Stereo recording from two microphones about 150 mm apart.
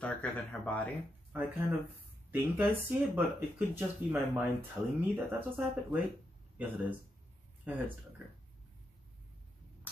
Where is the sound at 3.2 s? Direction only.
15° right (ahead or behind).